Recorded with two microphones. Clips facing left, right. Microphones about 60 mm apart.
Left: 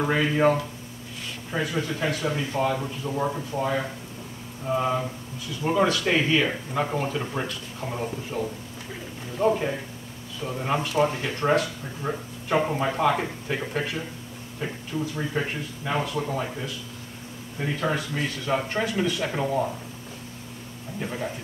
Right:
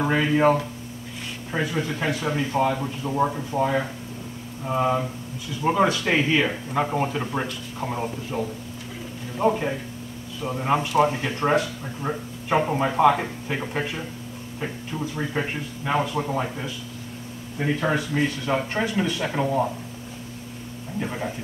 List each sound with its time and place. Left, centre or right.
0.0 s speech: centre
1.8 s speech: centre
9.4 s speech: centre
21.0 s speech: centre